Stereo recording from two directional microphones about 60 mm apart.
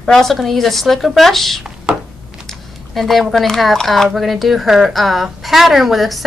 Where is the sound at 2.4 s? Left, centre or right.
Centre.